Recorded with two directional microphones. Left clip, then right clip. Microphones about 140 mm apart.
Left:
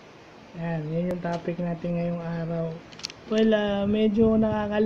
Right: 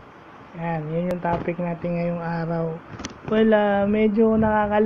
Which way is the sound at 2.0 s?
10° right (ahead or behind).